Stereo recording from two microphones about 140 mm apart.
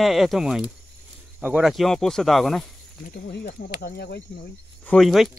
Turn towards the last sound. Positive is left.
turn(degrees=0)  # may be behind; listen again after turning